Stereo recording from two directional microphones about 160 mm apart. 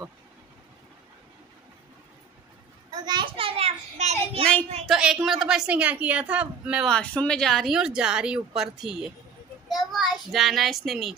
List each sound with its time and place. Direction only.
2.9 s a sound: 25° right (ahead or behind)
4.8 s a woman's voice: centre (ahead or behind)
6.9 s speech: 5° left (ahead or behind)
9.7 s child singing: centre (ahead or behind)